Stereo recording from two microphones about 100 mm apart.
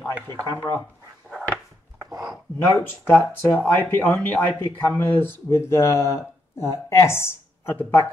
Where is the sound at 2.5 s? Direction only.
20° left (ahead or behind).